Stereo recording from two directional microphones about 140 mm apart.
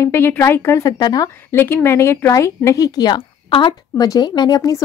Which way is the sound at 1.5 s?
15° left (ahead or behind).